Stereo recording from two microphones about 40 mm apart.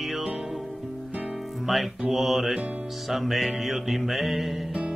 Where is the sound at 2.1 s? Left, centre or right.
Centre.